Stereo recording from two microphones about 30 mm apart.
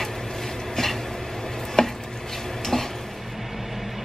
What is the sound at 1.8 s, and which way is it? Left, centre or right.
Chopping, centre.